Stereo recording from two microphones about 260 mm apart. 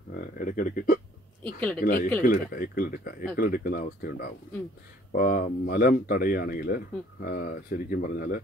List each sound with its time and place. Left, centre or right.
0.4 s speech: left
1.4 s speech: centre
2.2 s speech: left